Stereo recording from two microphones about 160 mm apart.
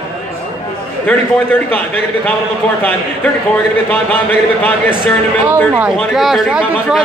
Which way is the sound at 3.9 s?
10° left (ahead or behind).